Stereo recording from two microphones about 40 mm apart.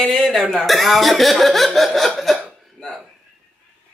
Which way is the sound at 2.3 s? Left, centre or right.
Centre.